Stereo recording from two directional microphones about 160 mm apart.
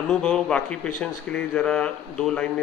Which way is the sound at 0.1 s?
5° left (ahead or behind).